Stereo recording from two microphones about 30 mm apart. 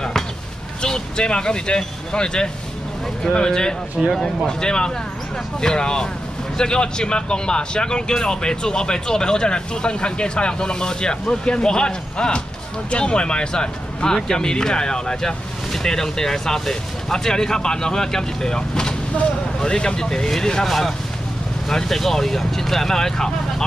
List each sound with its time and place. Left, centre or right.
0.8 s speech: left
4.0 s speech: centre
4.5 s speech: left
20.6 s speech: centre